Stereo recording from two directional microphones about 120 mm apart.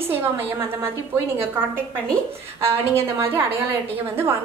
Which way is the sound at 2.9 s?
20° right (ahead or behind).